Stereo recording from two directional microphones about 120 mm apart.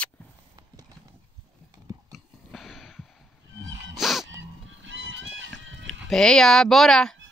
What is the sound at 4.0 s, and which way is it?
Dog, centre (ahead or behind).